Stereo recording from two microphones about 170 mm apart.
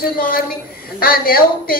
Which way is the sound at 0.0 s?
60° left (ahead or behind).